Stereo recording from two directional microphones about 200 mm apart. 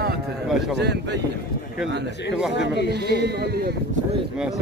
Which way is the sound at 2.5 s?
60° left (ahead or behind).